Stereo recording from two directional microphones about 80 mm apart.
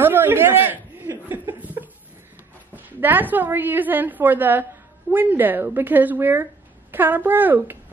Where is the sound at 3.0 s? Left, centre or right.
Right.